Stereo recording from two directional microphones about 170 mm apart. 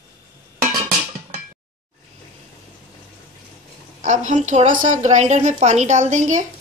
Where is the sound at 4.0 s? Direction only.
45° right (ahead or behind).